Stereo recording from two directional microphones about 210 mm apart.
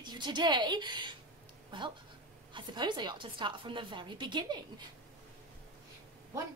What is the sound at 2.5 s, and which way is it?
A woman's voice, 20° right (ahead or behind).